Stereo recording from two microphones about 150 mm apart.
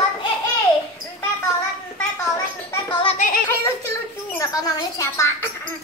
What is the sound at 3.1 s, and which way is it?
Music, 65° left (ahead or behind).